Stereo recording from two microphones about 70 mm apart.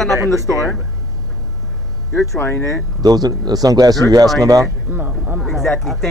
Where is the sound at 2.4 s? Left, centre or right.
Left.